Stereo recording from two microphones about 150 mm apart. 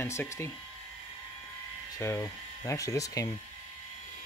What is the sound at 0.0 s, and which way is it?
Speech, 15° left (ahead or behind).